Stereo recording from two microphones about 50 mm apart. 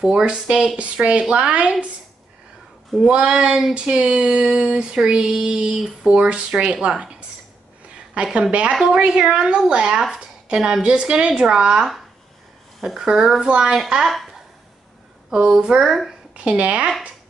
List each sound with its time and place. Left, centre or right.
0.1 s a woman's voice: right
0.4 s female singing: centre
0.7 s a woman's voice: right
3.0 s female singing: centre
6.2 s a woman's voice: centre
12.8 s female singing: centre
15.4 s female singing: centre
16.3 s a woman's voice: right